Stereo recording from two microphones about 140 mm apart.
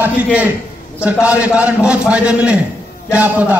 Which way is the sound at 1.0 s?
10° right (ahead or behind).